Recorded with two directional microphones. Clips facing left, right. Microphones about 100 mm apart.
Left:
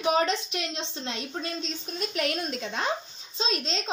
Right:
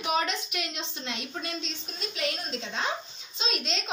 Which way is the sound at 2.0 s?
50° left (ahead or behind).